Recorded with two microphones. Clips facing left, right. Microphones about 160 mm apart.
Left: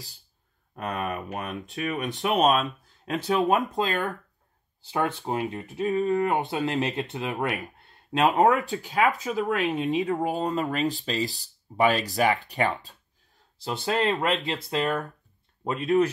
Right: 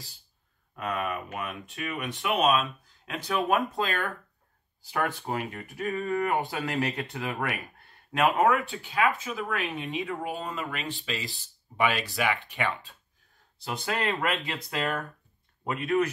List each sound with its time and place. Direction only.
0.7 s speech: 40° left (ahead or behind)
3.3 s speech: 20° left (ahead or behind)
8.6 s speech: 40° left (ahead or behind)
13.6 s speech: 25° left (ahead or behind)